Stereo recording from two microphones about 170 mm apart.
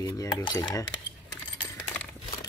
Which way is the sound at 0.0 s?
20° left (ahead or behind).